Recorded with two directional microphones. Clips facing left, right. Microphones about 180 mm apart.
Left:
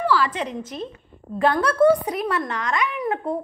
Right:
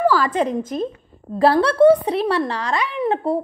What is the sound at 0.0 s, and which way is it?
Speech, 45° right (ahead or behind).